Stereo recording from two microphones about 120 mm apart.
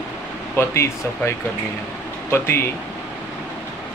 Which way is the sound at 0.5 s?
20° left (ahead or behind).